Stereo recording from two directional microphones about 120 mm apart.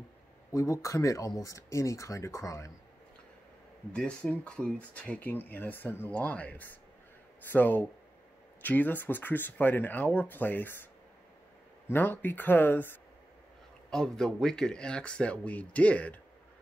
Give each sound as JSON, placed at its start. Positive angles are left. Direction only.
{"t": 0.5, "sound": "speech", "side_deg": 25}
{"t": 3.9, "sound": "speech", "side_deg": 10}
{"t": 11.9, "sound": "speech", "side_deg": 15}
{"t": 13.8, "sound": "speech", "side_deg": 5}